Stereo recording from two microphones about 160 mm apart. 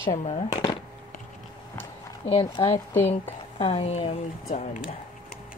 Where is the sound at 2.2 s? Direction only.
35° left (ahead or behind).